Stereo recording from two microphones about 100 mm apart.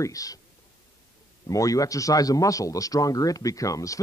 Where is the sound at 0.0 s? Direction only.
35° left (ahead or behind).